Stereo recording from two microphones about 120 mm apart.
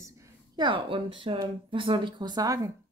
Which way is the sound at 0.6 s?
40° right (ahead or behind).